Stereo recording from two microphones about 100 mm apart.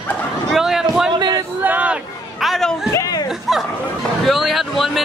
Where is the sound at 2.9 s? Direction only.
35° left (ahead or behind).